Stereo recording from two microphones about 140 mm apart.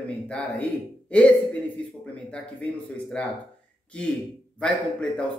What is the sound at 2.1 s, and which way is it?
Speech, 10° left (ahead or behind).